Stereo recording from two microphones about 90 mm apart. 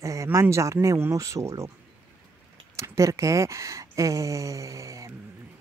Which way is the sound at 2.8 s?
35° right (ahead or behind).